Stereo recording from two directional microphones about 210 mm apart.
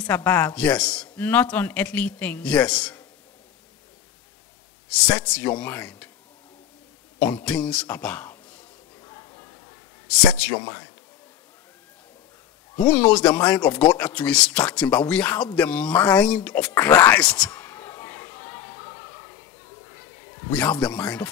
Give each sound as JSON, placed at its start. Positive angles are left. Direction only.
{"t": 0.0, "sound": "speech", "side_deg": 5}
{"t": 4.9, "sound": "speech", "side_deg": 5}
{"t": 7.2, "sound": "speech", "side_deg": 5}
{"t": 9.0, "sound": "a sound", "side_deg": 15}
{"t": 10.4, "sound": "speech", "side_deg": -5}
{"t": 12.7, "sound": "speech", "side_deg": 5}
{"t": 20.4, "sound": "speech", "side_deg": 5}